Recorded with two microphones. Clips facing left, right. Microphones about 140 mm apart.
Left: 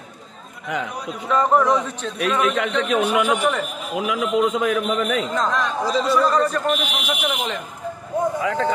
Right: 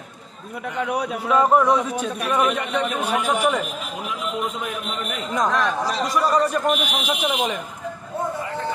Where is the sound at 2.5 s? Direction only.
90° left.